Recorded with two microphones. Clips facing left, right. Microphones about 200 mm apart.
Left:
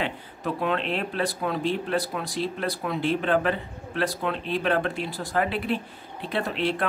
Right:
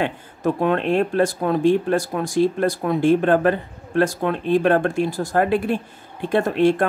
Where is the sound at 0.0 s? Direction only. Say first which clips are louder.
Right 8 dB; 50° right (ahead or behind).